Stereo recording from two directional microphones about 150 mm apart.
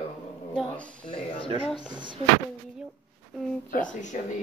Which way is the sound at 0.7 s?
5° left (ahead or behind).